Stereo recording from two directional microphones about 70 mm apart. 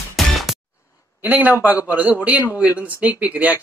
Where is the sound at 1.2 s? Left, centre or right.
Right.